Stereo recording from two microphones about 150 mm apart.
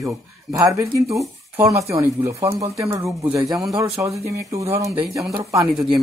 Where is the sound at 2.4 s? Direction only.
40° right (ahead or behind).